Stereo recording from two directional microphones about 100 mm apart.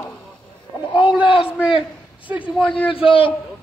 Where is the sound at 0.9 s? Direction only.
55° left (ahead or behind).